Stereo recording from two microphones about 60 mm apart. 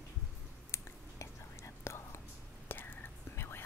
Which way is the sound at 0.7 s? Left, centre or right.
Left.